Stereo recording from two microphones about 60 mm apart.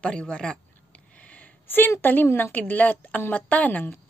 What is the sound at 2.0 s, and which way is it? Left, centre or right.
A woman's voice, left.